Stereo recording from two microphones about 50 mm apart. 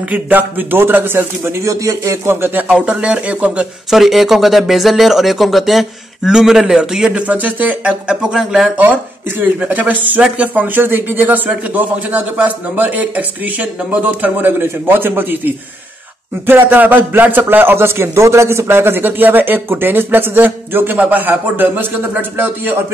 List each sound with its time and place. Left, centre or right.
0.1 s a man's voice: right
1.6 s speech: right
2.7 s speech: centre
3.9 s speech: centre
7.1 s a man's voice: right
8.1 s speech: centre
9.7 s a man's voice: right
14.6 s a man's voice: right